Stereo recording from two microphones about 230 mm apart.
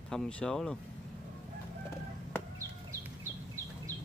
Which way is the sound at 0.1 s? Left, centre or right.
Centre.